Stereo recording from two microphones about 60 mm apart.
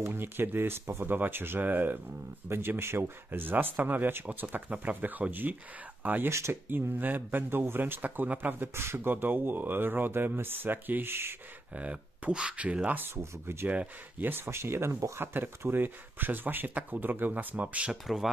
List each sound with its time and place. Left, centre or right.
0.0 s speech: right
11.7 s speech: right
13.1 s speech: right
13.7 s speech: right
14.3 s speech: right
15.3 s speech: right
18.0 s speech: centre